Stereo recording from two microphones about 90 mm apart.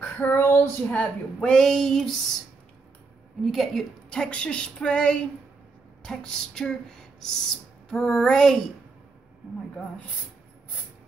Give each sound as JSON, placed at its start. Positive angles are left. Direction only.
{"t": 0.0, "sound": "child singing", "side_deg": 20}
{"t": 0.9, "sound": "speech", "side_deg": 10}
{"t": 3.4, "sound": "a woman's voice", "side_deg": 0}